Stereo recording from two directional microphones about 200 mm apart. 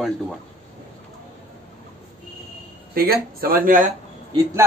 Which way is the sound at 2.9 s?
50° right (ahead or behind).